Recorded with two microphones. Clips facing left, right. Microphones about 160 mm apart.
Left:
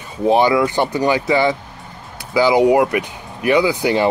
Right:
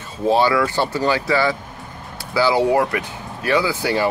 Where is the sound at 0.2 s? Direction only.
20° left (ahead or behind).